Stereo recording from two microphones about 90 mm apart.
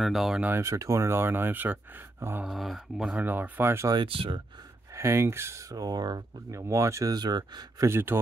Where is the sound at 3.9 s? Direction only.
70° right (ahead or behind).